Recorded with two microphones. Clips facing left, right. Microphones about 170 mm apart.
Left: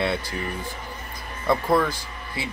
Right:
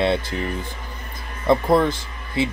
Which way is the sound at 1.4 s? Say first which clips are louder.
Right 4 dB; 25° right (ahead or behind).